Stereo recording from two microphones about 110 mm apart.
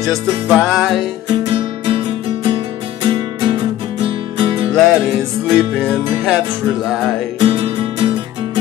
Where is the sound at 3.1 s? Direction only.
50° right (ahead or behind).